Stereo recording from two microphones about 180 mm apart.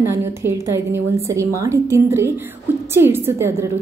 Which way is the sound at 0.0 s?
15° right (ahead or behind).